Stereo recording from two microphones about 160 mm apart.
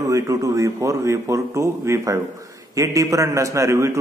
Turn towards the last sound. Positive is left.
turn(degrees=-20)  # may be behind; listen again after turning